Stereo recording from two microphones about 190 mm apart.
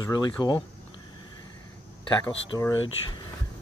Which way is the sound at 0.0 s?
20° left (ahead or behind).